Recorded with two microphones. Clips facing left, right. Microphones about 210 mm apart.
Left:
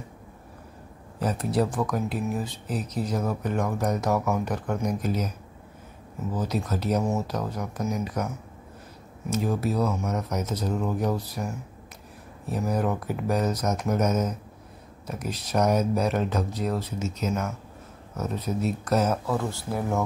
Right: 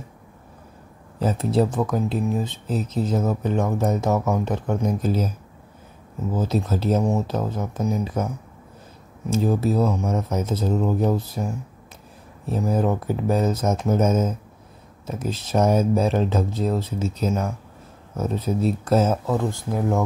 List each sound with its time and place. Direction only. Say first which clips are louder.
1.2 s speech: right 4 dB; 25° right (ahead or behind)
6.3 s speech: right 5 dB; 25° right (ahead or behind)
9.3 s speech: right 5 dB; 25° right (ahead or behind)